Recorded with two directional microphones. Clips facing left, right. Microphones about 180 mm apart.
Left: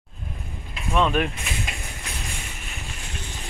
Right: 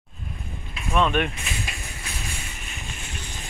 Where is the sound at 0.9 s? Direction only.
Centre (ahead or behind).